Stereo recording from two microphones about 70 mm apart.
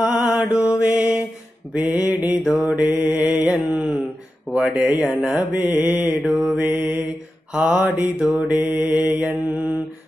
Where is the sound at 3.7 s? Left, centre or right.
Right.